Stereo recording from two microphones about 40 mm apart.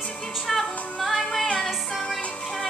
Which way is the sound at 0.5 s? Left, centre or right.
Centre.